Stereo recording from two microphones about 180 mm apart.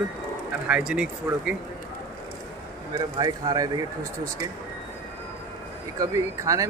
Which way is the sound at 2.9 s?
25° right (ahead or behind).